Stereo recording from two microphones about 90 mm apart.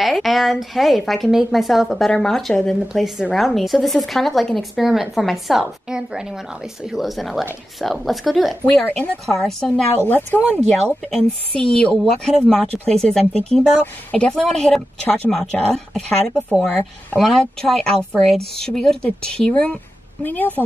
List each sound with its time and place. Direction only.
0.0 s a woman's voice: centre (ahead or behind)
8.8 s speech: 20° left (ahead or behind)
9.2 s a woman's voice: 5° left (ahead or behind)
10.0 s speech: 20° left (ahead or behind)
11.1 s a woman's voice: 5° left (ahead or behind)